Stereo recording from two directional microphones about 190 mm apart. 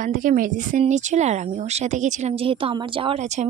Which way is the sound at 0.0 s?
45° right (ahead or behind).